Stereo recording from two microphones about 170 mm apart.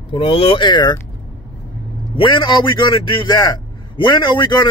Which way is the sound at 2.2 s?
25° left (ahead or behind).